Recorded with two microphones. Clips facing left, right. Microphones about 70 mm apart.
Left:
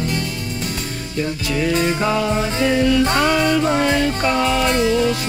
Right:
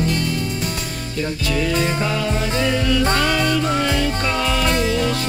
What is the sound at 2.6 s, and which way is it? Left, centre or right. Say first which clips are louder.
Music: left 4 dB; left.